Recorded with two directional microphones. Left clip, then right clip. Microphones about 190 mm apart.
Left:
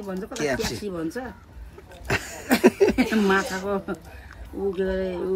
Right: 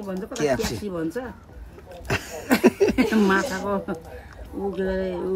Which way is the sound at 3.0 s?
Centre (ahead or behind).